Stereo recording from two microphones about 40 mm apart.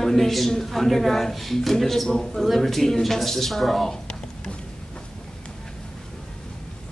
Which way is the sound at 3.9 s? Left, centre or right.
Centre.